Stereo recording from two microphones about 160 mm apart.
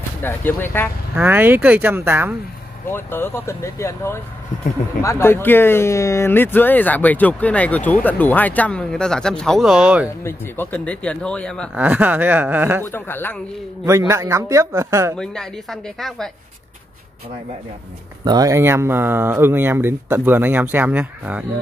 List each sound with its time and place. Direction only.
0.2 s speech: 10° left (ahead or behind)
1.1 s speech: 10° right (ahead or behind)
2.9 s speech: 15° left (ahead or behind); by 10.0 s 5° right (ahead or behind)
10.0 s speech: 15° left (ahead or behind)
11.7 s speech: 10° right (ahead or behind)
12.8 s speech: 15° left (ahead or behind)
13.8 s speech: 20° right (ahead or behind)
15.1 s speech: 5° left (ahead or behind)
18.2 s speech: 25° right (ahead or behind); by 21.5 s 10° right (ahead or behind)